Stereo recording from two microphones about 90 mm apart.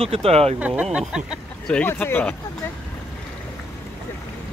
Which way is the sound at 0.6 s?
15° right (ahead or behind).